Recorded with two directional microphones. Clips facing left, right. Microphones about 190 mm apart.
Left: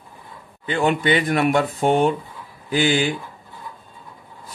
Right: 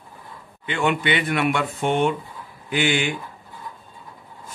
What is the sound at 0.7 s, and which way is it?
Speech, 40° left (ahead or behind).